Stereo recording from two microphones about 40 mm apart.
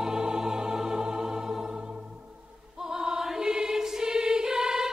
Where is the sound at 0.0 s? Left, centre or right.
Centre.